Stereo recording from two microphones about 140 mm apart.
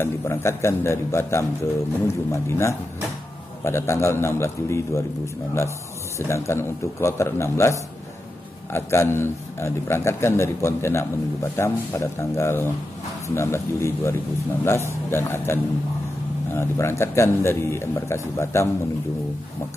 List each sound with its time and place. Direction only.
0.0 s speech: 20° left (ahead or behind)
6.1 s a man's voice: 20° left (ahead or behind)